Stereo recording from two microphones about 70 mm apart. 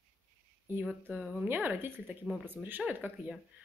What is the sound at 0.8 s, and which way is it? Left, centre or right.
Speech, centre.